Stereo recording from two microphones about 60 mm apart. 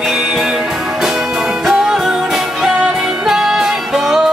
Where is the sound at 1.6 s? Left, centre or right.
Centre.